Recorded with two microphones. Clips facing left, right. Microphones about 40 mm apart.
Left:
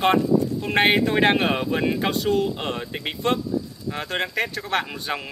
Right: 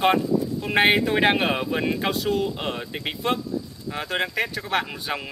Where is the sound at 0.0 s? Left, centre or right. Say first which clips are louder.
Left 2 dB; centre.